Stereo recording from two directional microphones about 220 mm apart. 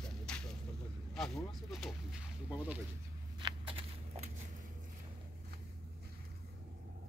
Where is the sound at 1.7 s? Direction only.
Centre (ahead or behind).